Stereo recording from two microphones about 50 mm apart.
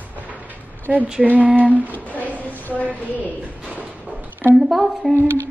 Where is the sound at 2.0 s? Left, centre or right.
Right.